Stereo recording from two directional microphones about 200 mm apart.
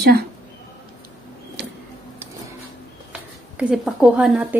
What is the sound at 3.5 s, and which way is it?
Speech, 5° right (ahead or behind).